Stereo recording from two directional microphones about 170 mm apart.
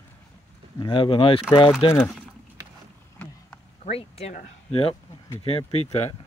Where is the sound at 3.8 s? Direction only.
35° left (ahead or behind).